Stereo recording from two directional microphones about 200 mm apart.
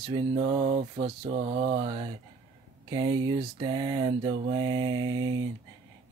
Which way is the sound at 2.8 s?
20° right (ahead or behind).